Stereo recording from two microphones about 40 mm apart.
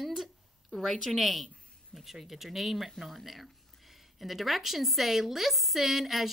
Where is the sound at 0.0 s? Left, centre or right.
Centre.